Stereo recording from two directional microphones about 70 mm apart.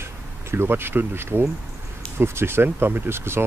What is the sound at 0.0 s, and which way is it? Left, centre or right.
Speech, right.